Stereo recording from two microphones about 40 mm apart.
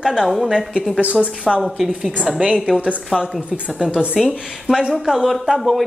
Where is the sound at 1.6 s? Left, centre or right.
Centre.